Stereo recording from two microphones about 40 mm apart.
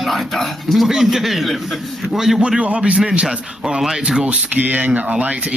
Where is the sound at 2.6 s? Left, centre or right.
Right.